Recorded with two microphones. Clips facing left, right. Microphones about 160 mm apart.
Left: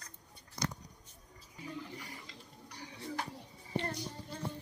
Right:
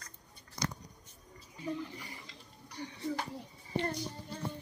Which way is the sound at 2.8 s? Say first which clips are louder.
Right 8 dB; 5° left (ahead or behind).